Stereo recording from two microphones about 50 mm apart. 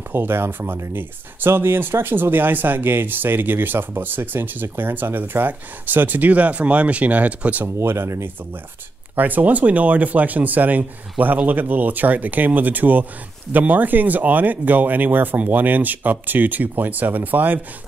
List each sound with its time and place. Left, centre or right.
0.1 s speech: right
7.6 s speech: right
9.1 s speech: right